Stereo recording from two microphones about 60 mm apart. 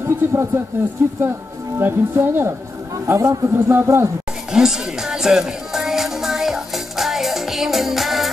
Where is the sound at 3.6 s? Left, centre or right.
Right.